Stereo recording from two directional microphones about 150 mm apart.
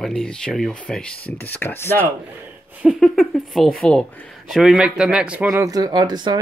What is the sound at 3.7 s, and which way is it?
Speech, 5° left (ahead or behind).